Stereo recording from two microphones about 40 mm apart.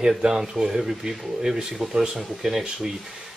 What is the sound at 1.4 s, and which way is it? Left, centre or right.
Speech, centre.